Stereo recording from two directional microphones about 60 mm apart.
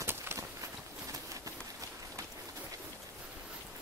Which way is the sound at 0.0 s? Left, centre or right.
Right.